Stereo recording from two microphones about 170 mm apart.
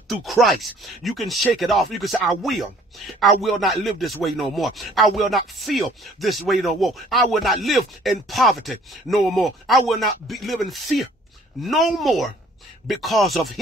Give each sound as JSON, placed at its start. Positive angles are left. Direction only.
{"t": 0.1, "sound": "speech", "side_deg": 0}